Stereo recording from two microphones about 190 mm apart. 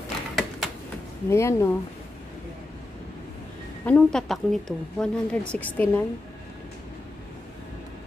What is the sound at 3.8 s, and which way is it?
A woman's voice, 5° left (ahead or behind).